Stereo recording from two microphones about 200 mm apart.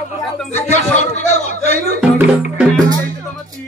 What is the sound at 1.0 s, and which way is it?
Speech, 35° left (ahead or behind).